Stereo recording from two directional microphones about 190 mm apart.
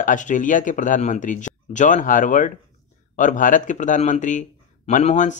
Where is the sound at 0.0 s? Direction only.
40° left (ahead or behind).